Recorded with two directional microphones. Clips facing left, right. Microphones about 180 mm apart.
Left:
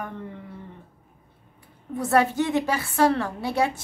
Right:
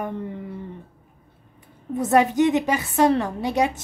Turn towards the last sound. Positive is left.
turn(degrees=-20)  # may be behind; listen again after turning